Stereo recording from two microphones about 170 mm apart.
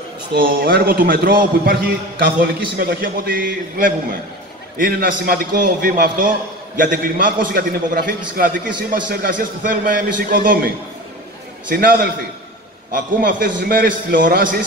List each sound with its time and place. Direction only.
0.3 s a man's voice: 55° right (ahead or behind)
11.7 s a man's voice: 60° right (ahead or behind)